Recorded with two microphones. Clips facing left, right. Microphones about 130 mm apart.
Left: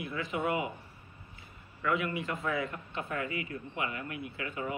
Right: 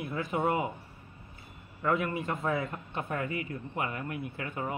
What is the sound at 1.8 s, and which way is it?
A man's voice, 40° right (ahead or behind).